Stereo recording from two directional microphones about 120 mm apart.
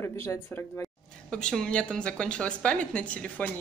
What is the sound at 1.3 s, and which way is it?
A woman's voice, 5° left (ahead or behind).